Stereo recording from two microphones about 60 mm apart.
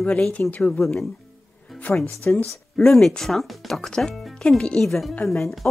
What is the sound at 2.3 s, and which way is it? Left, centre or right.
Speech, left.